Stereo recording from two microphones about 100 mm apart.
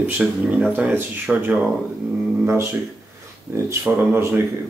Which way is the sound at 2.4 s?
25° right (ahead or behind).